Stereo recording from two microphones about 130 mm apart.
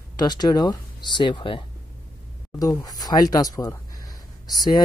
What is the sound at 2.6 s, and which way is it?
Speech, 30° left (ahead or behind).